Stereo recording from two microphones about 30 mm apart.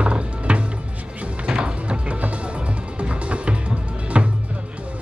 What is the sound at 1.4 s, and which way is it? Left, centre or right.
Music, right.